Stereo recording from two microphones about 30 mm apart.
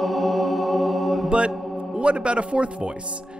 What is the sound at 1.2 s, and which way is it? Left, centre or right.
Mantra, right.